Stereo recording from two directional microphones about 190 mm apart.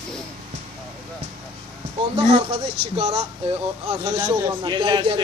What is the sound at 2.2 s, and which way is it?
Speech, 30° right (ahead or behind).